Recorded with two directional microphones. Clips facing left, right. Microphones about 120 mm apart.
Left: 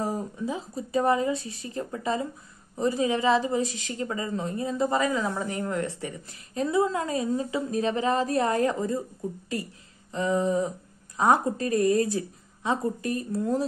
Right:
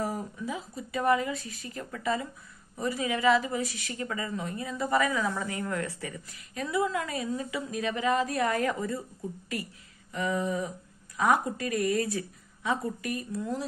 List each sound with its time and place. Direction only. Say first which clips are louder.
0.0 s a woman's voice: left 3 dB; 25° left (ahead or behind)
10.1 s a woman's voice: left 5 dB; 30° left (ahead or behind)
13.3 s speech: left 8 dB; 45° left (ahead or behind)